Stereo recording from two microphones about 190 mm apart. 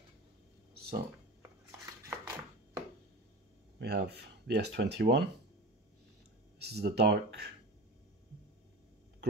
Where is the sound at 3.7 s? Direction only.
60° right (ahead or behind).